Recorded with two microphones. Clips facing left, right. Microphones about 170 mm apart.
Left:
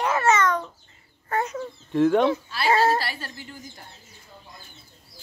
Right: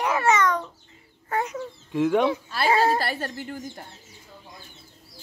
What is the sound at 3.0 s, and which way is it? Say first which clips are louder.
Speech: right 4 dB; 50° right (ahead or behind).